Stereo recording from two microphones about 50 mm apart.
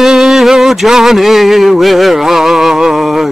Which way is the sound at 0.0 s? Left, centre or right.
Centre.